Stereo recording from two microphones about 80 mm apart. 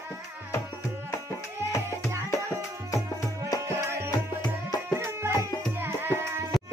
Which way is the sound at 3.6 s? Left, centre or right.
Right.